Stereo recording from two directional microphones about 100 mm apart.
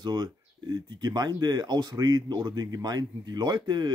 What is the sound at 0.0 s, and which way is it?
Speech, 45° right (ahead or behind).